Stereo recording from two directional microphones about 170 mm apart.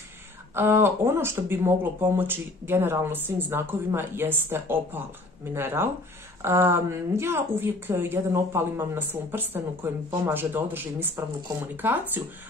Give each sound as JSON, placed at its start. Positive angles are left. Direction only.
{"t": 0.6, "sound": "speech", "side_deg": -15}